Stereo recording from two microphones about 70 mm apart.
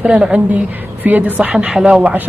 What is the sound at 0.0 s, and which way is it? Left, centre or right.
A woman's voice, centre.